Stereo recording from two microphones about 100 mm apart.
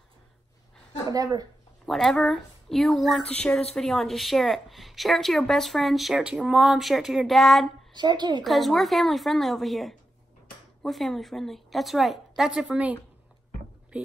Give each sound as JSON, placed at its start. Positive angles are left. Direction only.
{"t": 1.1, "sound": "speech", "side_deg": -40}
{"t": 1.9, "sound": "a woman's voice", "side_deg": 0}
{"t": 3.3, "sound": "a woman's voice", "side_deg": 10}
{"t": 7.9, "sound": "a woman's voice", "side_deg": -50}
{"t": 8.5, "sound": "a woman's voice", "side_deg": 0}